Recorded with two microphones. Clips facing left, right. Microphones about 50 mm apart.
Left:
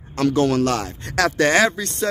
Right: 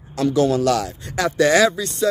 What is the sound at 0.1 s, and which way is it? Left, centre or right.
Speech, left.